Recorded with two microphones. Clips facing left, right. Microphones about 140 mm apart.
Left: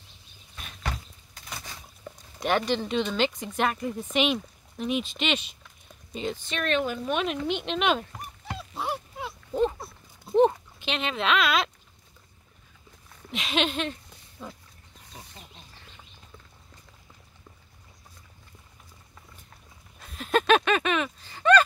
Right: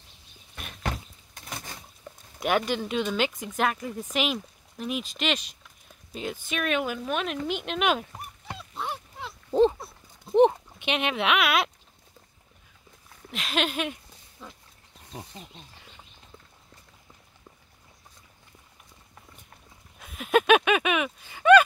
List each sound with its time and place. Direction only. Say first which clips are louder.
0.6 s a sound: right 2 dB; 50° right (ahead or behind)
2.0 s speech: even; 5° right (ahead or behind)
8.7 s dog: left 3 dB; 10° left (ahead or behind)
10.9 s speech: right 1 dB; 10° right (ahead or behind)
13.3 s speech: left 1 dB; centre (ahead or behind)
14.4 s speech: left 5 dB; 5° left (ahead or behind)
20.0 s a sound: right 2 dB; 5° right (ahead or behind)